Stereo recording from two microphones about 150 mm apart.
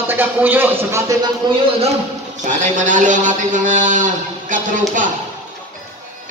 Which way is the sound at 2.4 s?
55° right (ahead or behind).